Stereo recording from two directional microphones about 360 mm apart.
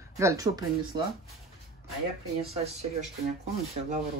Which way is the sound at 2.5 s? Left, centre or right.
Centre.